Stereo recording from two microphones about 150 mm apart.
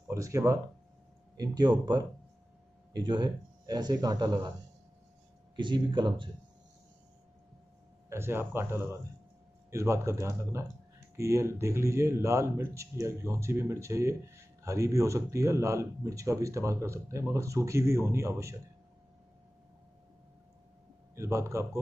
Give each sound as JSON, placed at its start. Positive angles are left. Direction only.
{"t": 0.1, "sound": "speech", "side_deg": -20}
{"t": 5.6, "sound": "speech", "side_deg": -30}
{"t": 8.1, "sound": "speech", "side_deg": -15}
{"t": 21.1, "sound": "speech", "side_deg": -20}